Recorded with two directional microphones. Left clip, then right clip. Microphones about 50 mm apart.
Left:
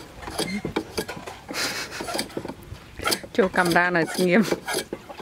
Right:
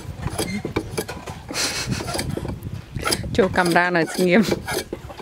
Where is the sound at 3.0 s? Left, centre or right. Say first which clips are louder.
Right 2 dB; centre.